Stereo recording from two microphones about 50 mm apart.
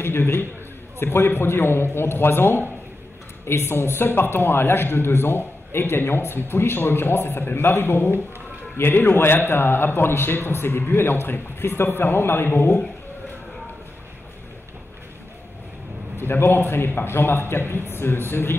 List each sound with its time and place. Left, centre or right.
0.0 s a man's voice: left
16.2 s a man's voice: left